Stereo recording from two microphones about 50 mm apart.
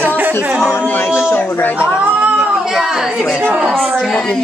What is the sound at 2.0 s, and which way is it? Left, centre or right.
Cat, right.